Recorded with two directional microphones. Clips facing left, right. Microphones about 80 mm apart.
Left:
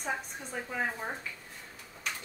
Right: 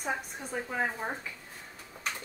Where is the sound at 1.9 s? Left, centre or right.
Centre.